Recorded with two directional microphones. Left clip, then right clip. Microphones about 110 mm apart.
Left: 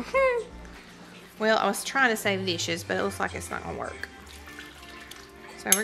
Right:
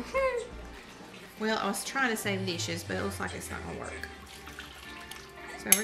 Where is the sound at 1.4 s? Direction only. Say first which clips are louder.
Left 7 dB; 20° left (ahead or behind).